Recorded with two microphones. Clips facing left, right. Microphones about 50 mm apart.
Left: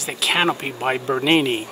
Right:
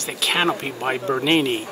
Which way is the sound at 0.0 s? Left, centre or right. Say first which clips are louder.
Left 1 dB; centre.